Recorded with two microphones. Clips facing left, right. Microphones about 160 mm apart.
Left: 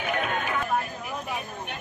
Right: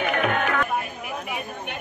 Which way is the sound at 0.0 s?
70° right (ahead or behind).